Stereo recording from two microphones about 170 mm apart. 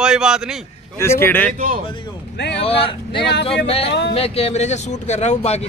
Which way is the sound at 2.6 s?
35° left (ahead or behind).